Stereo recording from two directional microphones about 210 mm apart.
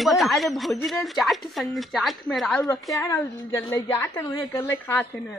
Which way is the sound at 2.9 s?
15° left (ahead or behind).